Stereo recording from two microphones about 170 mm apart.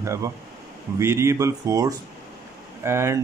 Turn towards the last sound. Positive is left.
turn(degrees=-15)  # may be behind; listen again after turning